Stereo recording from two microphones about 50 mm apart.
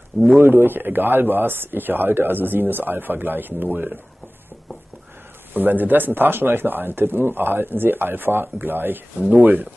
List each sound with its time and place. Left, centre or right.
0.4 s speech: right
5.5 s speech: right